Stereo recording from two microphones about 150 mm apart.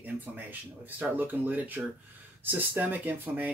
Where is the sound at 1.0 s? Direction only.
10° right (ahead or behind).